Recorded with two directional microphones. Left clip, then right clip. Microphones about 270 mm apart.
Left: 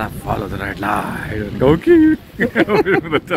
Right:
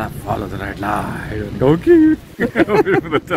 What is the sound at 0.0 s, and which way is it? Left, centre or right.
Speech, centre.